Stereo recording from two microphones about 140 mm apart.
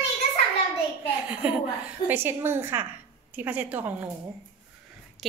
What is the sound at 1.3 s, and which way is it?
A woman's voice, 10° right (ahead or behind).